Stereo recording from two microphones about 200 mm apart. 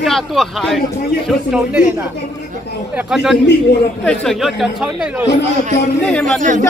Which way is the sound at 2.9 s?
5° right (ahead or behind).